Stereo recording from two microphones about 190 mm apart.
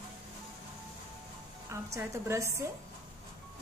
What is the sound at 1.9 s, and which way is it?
Speech, 15° right (ahead or behind).